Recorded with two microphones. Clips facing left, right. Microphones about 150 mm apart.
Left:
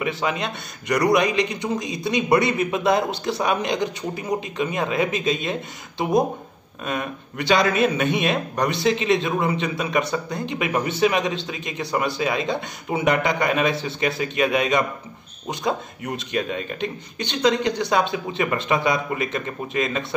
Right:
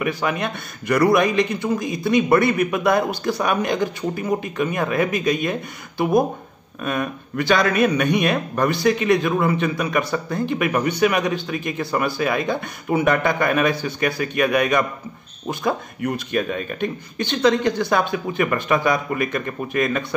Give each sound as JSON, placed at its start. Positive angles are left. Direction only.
{"t": 0.0, "sound": "a man's voice", "side_deg": 20}
{"t": 16.1, "sound": "a man's voice", "side_deg": 25}